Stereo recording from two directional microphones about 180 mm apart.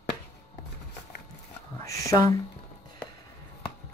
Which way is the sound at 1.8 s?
15° left (ahead or behind).